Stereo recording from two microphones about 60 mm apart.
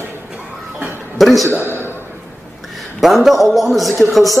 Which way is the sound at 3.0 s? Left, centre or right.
Centre.